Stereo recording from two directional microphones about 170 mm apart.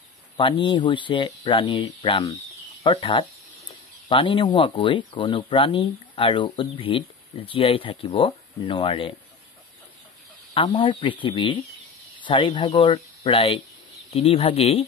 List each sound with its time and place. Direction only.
0.4 s speech: 30° left (ahead or behind)
10.5 s speech: 30° left (ahead or behind)